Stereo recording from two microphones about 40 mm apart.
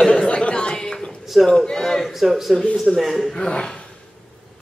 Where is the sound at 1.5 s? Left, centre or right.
Centre.